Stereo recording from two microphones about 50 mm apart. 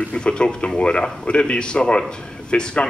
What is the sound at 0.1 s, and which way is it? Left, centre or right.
A man's voice, centre.